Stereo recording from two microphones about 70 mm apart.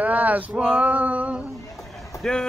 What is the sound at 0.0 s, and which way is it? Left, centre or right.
Male singing, right.